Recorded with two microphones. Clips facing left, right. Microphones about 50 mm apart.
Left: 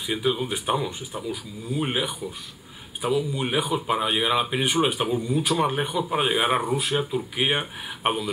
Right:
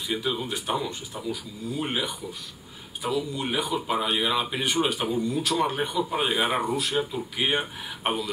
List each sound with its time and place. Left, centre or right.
0.0 s speech: centre
6.2 s speech: centre